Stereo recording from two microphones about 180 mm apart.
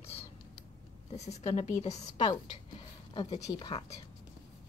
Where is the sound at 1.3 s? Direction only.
35° left (ahead or behind).